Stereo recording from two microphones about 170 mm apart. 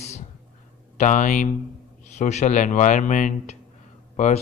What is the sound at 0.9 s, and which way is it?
A man's voice, 45° left (ahead or behind).